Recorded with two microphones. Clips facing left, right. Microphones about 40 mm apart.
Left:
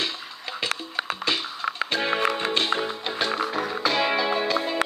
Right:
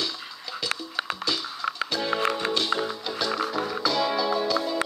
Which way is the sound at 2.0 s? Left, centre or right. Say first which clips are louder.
Left 2 dB; left.